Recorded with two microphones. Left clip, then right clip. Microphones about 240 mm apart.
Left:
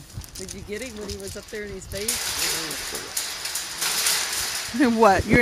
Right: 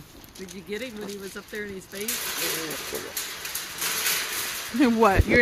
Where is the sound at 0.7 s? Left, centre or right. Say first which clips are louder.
Even; right.